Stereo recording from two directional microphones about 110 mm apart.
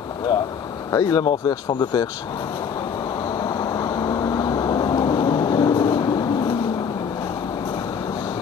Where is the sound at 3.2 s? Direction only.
35° left (ahead or behind).